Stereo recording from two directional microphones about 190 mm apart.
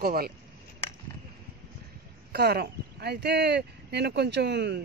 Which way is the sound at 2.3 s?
55° right (ahead or behind).